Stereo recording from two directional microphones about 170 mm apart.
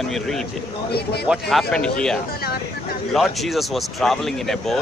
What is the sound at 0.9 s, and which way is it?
Speech, 70° left (ahead or behind).